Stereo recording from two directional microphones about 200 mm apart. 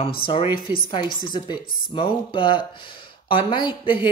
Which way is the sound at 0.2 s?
25° left (ahead or behind).